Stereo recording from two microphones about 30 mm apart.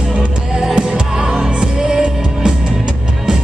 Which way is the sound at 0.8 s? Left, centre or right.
Centre.